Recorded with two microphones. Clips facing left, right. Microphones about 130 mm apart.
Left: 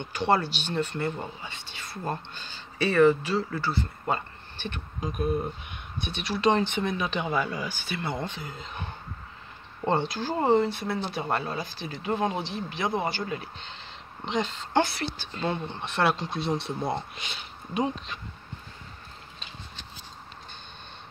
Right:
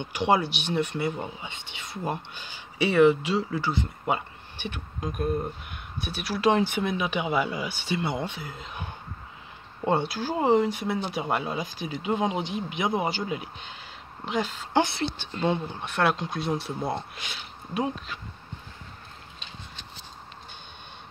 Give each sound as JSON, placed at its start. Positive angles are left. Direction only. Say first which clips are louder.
{"t": 0.0, "sound": "speech", "louder": "right 1 dB", "side_deg": -15}
{"t": 5.0, "sound": "speech", "louder": "even", "side_deg": 0}
{"t": 14.9, "sound": "speech", "louder": "right 3 dB", "side_deg": -20}
{"t": 15.7, "sound": "speech", "louder": "even", "side_deg": 0}